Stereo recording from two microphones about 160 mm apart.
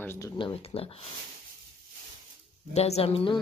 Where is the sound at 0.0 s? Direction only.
15° left (ahead or behind).